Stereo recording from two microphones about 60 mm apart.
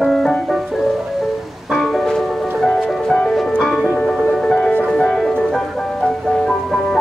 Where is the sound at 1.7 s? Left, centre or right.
Centre.